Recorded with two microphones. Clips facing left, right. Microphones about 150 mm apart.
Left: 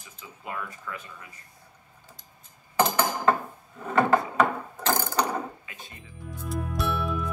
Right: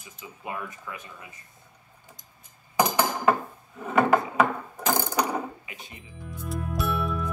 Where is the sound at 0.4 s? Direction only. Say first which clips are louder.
Right 1 dB; 20° right (ahead or behind).